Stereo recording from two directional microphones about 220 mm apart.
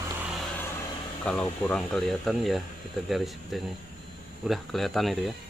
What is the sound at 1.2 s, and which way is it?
Speech, 5° left (ahead or behind).